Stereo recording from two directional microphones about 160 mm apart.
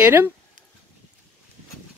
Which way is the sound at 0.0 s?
10° right (ahead or behind).